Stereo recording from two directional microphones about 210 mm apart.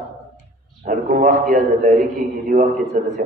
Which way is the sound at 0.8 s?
40° right (ahead or behind).